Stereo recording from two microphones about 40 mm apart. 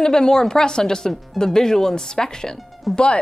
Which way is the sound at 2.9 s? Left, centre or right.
Centre.